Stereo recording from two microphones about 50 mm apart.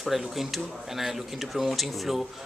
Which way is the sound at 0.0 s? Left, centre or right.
Centre.